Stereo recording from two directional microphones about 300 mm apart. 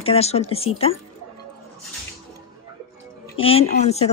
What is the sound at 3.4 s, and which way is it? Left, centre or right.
Speech, centre.